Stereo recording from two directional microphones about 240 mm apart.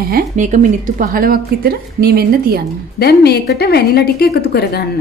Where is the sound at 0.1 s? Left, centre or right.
Right.